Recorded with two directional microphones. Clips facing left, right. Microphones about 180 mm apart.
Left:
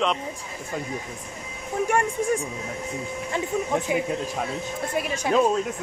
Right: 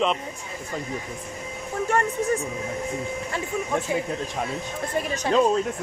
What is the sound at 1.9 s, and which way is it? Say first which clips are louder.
Speech: right 1 dB; 10° left (ahead or behind).